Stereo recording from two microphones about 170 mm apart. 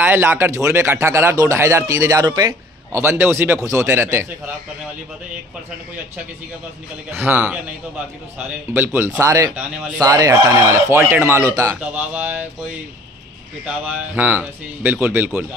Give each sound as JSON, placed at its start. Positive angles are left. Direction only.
{"t": 0.0, "sound": "speech", "side_deg": -15}
{"t": 7.1, "sound": "speech", "side_deg": -10}
{"t": 11.7, "sound": "speech", "side_deg": -10}
{"t": 13.7, "sound": "speech", "side_deg": -10}